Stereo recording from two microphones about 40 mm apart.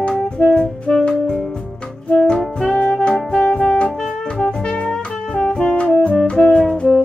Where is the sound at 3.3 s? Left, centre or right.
Left.